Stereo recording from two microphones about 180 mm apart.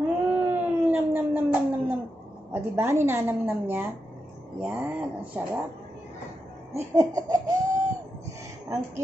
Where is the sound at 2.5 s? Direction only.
15° right (ahead or behind).